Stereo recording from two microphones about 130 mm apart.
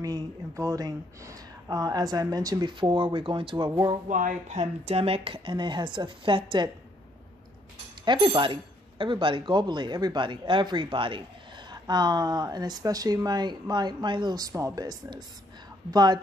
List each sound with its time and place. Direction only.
0.0 s speech: 25° right (ahead or behind)
4.1 s speech: 80° right; by 6.7 s 40° right (ahead or behind)
8.0 s speech: 40° right (ahead or behind)